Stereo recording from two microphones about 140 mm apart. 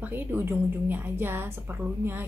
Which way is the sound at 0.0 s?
15° right (ahead or behind).